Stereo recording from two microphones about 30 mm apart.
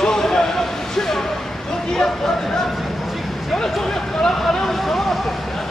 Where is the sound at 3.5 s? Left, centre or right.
Centre.